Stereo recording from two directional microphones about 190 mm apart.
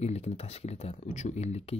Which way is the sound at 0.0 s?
35° left (ahead or behind).